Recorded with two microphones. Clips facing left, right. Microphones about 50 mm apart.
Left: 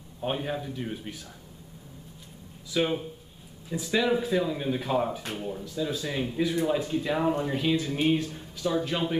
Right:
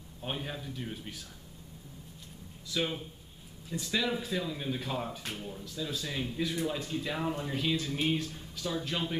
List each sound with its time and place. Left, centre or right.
0.2 s speech: centre
2.7 s speech: centre